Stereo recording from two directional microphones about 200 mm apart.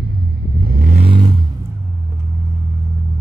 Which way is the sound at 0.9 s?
25° right (ahead or behind).